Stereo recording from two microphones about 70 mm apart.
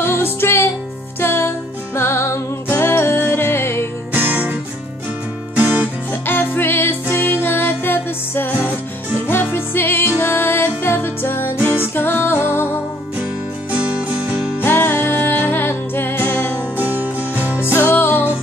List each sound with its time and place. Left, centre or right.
0.0 s music: left
4.1 s music: right
5.6 s music: right
6.2 s music: left
13.7 s music: centre
14.6 s music: left
16.7 s music: right
17.7 s music: left